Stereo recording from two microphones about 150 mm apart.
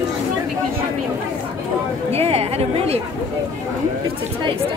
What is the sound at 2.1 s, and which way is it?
Speech, 40° right (ahead or behind).